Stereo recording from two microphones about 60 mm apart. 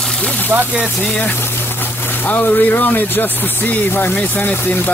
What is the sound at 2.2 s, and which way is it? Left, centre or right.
Speech, left.